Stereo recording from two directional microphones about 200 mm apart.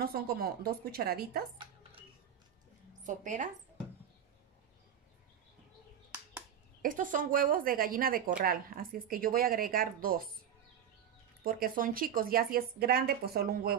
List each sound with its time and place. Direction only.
0.0 s a woman's voice: 50° right (ahead or behind)
3.0 s speech: 40° right (ahead or behind)
6.8 s a woman's voice: 40° right (ahead or behind)
11.4 s a woman's voice: 45° right (ahead or behind)